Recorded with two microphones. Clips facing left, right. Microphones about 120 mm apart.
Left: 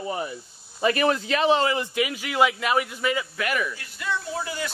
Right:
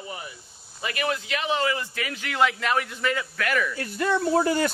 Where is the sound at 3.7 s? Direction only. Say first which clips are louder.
Right 6 dB; 45° right (ahead or behind).